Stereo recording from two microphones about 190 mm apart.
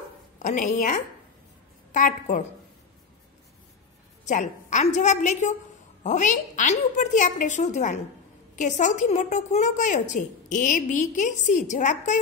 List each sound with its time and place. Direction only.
0.4 s a woman's voice: 40° left (ahead or behind)
4.2 s a woman's voice: 40° left (ahead or behind)